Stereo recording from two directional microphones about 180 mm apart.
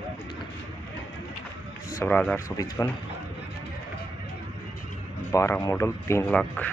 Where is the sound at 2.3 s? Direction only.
20° left (ahead or behind).